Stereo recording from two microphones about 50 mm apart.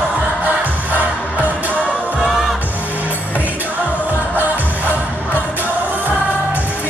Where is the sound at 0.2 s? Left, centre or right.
Right.